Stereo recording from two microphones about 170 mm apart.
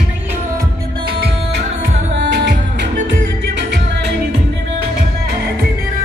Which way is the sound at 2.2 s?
90° right.